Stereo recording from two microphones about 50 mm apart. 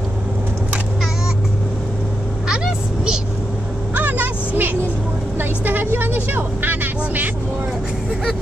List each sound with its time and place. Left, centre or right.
2.4 s vehicle: centre
3.9 s vehicle: right